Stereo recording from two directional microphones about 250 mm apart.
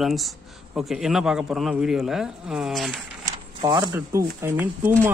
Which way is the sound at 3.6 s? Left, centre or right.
Centre.